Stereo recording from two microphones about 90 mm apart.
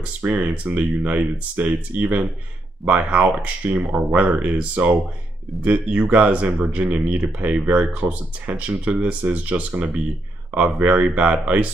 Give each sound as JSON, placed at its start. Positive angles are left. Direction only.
{"t": 0.0, "sound": "speech", "side_deg": -15}